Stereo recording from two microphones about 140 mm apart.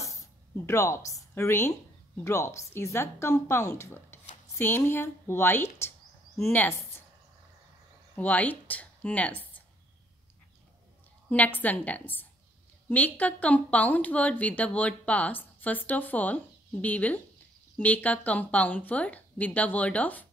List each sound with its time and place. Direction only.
0.7 s a woman's voice: 20° left (ahead or behind)
8.2 s a woman's voice: 10° left (ahead or behind)
11.2 s a woman's voice: 10° left (ahead or behind)